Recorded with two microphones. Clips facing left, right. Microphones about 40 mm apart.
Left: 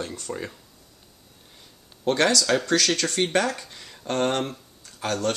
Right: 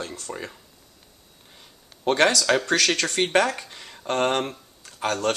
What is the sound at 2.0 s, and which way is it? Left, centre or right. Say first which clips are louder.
Speech: right 2 dB; right.